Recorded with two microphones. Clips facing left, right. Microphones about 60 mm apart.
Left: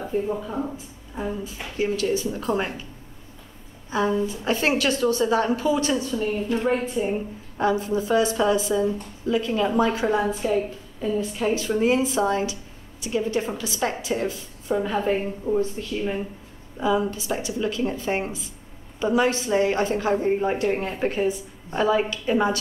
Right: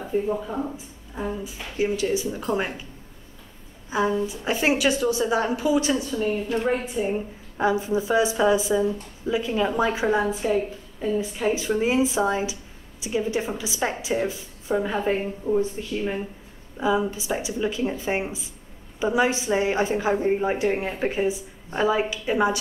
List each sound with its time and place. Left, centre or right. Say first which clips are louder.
0.3 s speech: right 1 dB; centre
1.4 s a woman's voice: even; centre
4.3 s a woman's voice: even; centre
6.0 s a woman's voice: even; centre
16.8 s a woman's voice: even; centre